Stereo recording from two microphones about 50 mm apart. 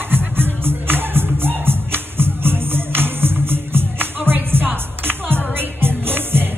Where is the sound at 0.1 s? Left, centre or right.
Right.